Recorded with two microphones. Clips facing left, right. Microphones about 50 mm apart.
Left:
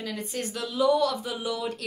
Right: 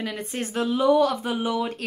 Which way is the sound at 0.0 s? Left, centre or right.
Right.